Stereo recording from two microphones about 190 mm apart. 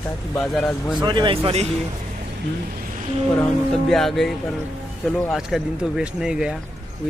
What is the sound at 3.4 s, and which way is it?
Speech, centre (ahead or behind).